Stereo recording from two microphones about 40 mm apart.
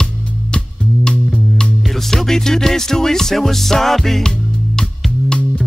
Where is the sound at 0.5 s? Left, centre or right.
Left.